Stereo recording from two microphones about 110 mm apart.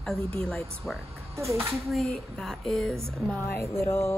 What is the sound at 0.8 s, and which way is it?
Music, 20° left (ahead or behind).